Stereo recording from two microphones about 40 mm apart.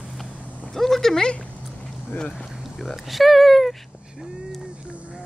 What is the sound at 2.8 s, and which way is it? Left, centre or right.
Speech, centre.